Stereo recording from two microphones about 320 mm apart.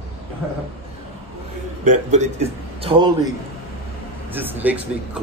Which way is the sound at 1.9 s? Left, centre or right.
Right.